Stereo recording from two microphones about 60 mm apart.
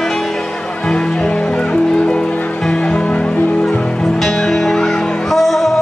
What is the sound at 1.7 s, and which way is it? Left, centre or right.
Music, centre.